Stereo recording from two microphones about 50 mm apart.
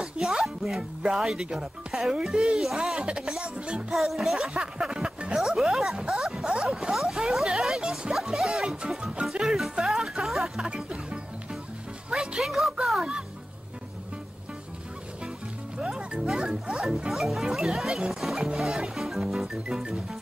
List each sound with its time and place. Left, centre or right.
0.0 s speech: centre
3.9 s music: centre
4.6 s music: centre
5.4 s speech: centre
7.0 s a sound: centre
8.1 s music: centre
10.7 s music: centre
12.4 s music: centre
15.8 s music: centre